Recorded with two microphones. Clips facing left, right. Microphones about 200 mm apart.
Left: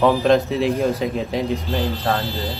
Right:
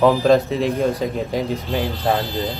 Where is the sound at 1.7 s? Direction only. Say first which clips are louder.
Right 4 dB; 15° right (ahead or behind).